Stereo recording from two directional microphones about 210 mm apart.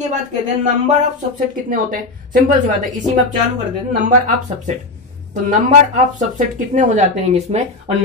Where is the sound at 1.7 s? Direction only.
40° right (ahead or behind).